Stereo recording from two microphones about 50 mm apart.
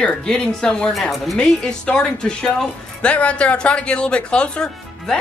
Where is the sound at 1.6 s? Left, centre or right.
Centre.